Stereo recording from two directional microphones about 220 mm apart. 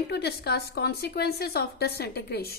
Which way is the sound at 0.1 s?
50° left (ahead or behind).